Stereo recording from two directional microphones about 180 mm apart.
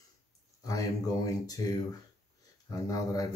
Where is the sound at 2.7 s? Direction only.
20° left (ahead or behind).